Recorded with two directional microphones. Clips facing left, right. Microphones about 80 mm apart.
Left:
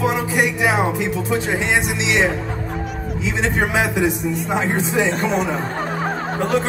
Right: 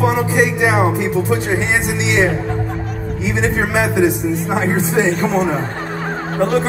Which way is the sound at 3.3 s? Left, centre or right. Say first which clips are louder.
Right 2 dB; right.